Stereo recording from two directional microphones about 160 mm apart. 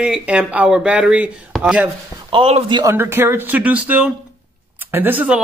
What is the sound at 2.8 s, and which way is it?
Speech, 15° right (ahead or behind).